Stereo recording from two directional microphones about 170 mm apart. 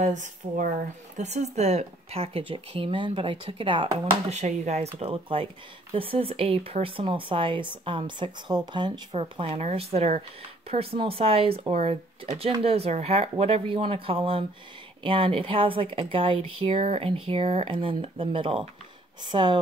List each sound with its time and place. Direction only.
0.0 s speech: 45° right (ahead or behind); by 19.6 s 25° right (ahead or behind)